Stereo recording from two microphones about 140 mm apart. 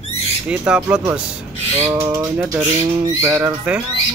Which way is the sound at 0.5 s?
5° right (ahead or behind).